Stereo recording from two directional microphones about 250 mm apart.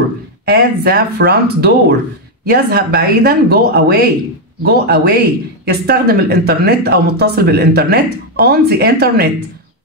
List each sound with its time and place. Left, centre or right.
0.5 s speech: right